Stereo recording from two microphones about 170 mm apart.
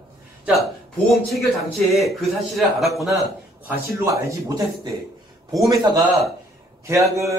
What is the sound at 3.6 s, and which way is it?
Speech, 15° right (ahead or behind).